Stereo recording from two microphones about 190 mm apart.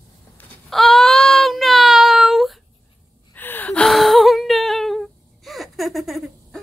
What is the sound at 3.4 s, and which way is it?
Whimper, 10° left (ahead or behind).